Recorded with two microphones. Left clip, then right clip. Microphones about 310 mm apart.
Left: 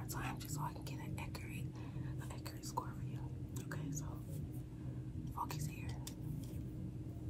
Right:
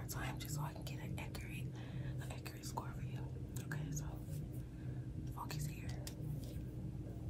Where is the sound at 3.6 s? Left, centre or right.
Centre.